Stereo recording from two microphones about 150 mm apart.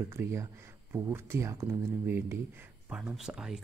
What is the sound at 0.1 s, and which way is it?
Speech, 15° right (ahead or behind).